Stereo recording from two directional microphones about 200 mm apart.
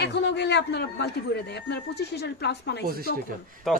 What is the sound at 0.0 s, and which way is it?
A man's voice, 60° left (ahead or behind).